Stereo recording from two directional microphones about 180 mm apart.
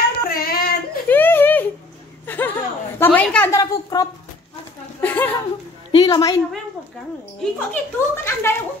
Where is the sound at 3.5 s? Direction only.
20° left (ahead or behind).